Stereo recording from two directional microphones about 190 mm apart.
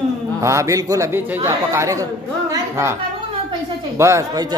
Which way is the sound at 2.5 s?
15° right (ahead or behind).